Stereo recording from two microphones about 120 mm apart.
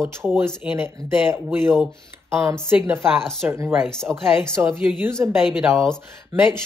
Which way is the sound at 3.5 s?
25° right (ahead or behind).